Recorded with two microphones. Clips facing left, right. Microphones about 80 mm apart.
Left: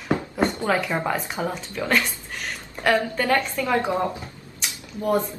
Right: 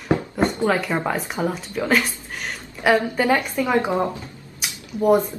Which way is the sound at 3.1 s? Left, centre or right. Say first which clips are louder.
Right 3 dB; centre.